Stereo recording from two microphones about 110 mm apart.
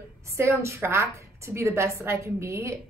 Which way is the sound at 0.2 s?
25° right (ahead or behind).